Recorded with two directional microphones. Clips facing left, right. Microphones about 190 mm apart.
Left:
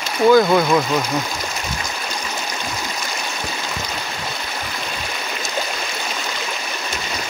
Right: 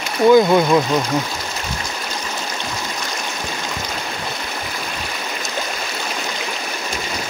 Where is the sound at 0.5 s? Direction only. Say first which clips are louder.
Right 2 dB; 15° right (ahead or behind).